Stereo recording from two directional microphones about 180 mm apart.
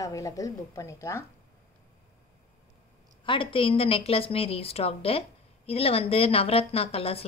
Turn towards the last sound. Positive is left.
turn(degrees=35)  # may be behind; listen again after turning